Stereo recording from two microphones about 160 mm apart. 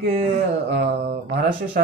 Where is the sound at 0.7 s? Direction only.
85° right.